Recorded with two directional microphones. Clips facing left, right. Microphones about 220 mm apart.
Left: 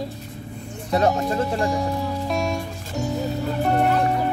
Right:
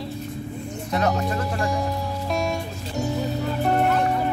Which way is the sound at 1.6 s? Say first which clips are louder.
Left 2 dB; centre (ahead or behind).